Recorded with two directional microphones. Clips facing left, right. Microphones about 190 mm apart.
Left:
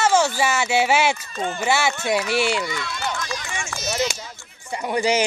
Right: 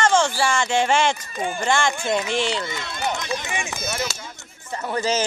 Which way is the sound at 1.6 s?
5° left (ahead or behind).